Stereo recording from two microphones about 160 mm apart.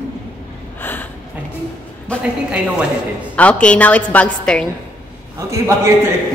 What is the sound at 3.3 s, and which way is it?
A woman's voice, 10° left (ahead or behind).